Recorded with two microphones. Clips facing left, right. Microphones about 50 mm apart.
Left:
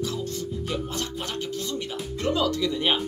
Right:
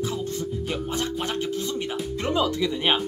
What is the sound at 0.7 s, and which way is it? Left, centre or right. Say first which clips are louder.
Speech: right 3 dB; right.